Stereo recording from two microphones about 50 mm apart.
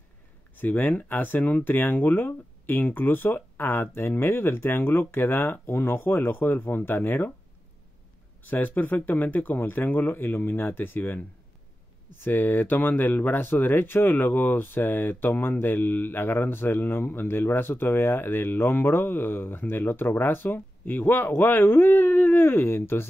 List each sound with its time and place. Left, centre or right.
0.6 s speech: left
8.5 s speech: left